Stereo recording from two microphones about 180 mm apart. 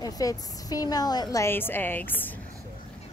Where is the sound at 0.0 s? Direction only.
20° left (ahead or behind).